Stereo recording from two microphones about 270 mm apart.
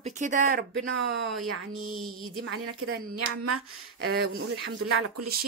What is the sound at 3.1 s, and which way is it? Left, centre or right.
Speech, right.